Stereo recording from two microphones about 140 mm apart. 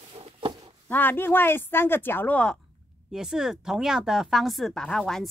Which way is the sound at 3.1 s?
5° right (ahead or behind).